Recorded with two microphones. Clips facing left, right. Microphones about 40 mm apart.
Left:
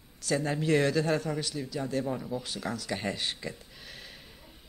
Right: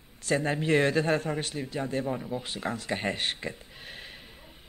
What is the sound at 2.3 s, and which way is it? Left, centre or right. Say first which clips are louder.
Speech: right 2 dB; right.